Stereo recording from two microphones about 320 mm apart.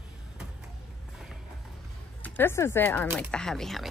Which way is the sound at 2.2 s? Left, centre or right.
Centre.